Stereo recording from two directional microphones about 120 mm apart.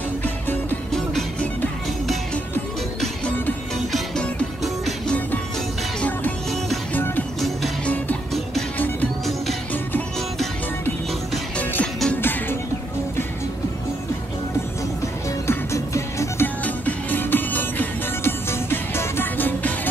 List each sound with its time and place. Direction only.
0.2 s music: 15° left (ahead or behind)
0.9 s music: 5° left (ahead or behind)
3.0 s music: 10° left (ahead or behind)
4.8 s music: 10° left (ahead or behind)
7.3 s music: centre (ahead or behind)
8.7 s music: 15° left (ahead or behind)
11.5 s music: 10° left (ahead or behind)
15.4 s music: 25° left (ahead or behind)
16.6 s music: 15° left (ahead or behind)